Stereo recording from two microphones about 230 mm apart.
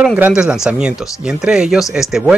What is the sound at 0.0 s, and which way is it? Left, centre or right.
Speech, centre.